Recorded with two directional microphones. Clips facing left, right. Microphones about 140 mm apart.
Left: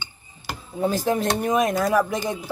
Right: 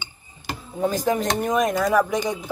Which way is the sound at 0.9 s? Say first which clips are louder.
Even; 45° right (ahead or behind).